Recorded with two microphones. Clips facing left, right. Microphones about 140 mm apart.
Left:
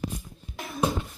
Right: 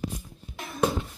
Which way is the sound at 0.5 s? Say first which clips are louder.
Left 2 dB; centre (ahead or behind).